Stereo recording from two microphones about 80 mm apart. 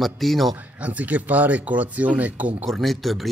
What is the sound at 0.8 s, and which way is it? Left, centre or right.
Speech, centre.